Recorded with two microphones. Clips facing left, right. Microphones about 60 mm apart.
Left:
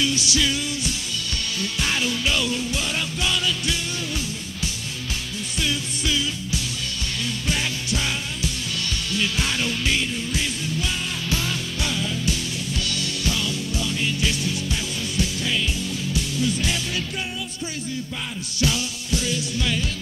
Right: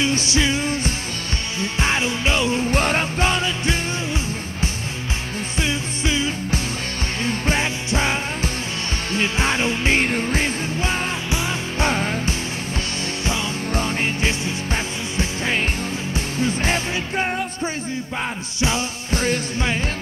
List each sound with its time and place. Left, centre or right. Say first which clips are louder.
0.0 s music: right 3 dB; right
9.9 s music: right 6 dB; right
13.7 s music: right 4 dB; right
18.6 s music: right 2 dB; right
19.1 s music: right 4 dB; right